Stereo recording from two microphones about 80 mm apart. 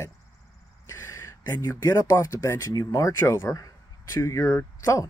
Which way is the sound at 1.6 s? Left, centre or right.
Left.